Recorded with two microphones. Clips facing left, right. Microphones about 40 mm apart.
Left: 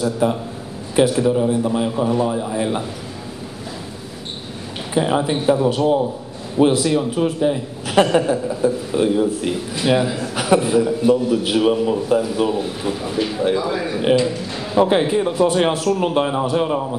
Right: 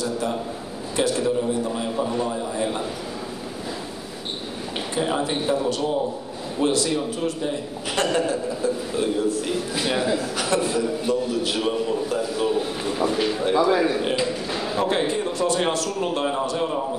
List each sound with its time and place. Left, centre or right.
0.0 s a man's voice: centre
4.9 s a man's voice: centre
10.3 s a man's voice: centre
14.2 s a sound: centre
14.8 s a man's voice: centre